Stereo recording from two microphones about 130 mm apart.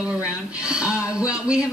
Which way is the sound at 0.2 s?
5° right (ahead or behind).